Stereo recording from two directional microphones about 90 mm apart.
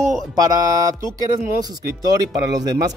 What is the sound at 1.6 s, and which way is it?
Speech, 45° right (ahead or behind).